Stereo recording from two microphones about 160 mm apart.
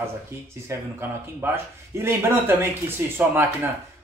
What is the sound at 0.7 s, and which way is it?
Speech, 15° right (ahead or behind).